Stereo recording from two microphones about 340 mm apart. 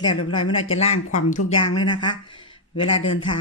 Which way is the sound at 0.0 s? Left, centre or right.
Centre.